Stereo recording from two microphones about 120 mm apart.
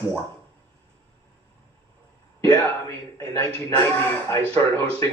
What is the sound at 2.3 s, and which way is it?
Speech, 20° left (ahead or behind).